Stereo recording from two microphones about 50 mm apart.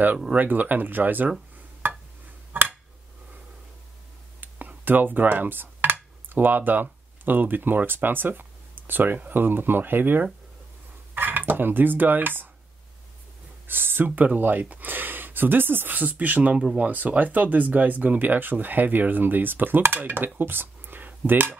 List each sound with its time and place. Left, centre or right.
0.3 s speech: right
1.8 s a sound: right
4.4 s speech: right
11.1 s dishes: right
13.7 s speech: right
20.3 s a sound: right